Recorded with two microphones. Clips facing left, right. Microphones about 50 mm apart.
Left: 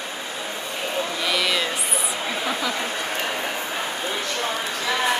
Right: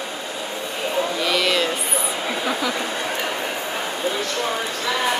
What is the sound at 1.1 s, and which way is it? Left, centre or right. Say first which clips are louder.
Speech: right 2 dB; centre.